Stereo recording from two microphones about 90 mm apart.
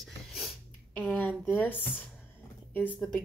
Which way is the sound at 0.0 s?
Centre (ahead or behind).